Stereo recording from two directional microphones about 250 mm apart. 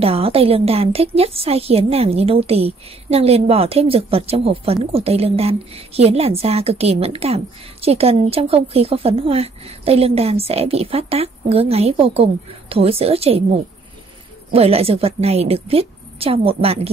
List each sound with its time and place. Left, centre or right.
0.0 s a woman's voice: right
14.5 s a woman's voice: right